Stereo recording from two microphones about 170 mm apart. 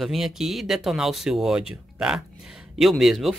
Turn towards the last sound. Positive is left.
turn(degrees=0)  # may be behind; listen again after turning